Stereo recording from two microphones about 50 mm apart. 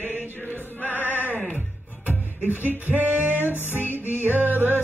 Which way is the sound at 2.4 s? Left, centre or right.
Right.